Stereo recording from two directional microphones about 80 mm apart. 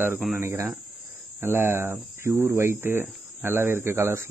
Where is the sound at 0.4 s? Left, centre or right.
Right.